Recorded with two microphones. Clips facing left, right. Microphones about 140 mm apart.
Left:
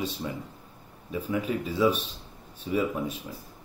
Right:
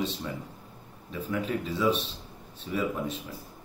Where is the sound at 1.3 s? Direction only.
10° left (ahead or behind).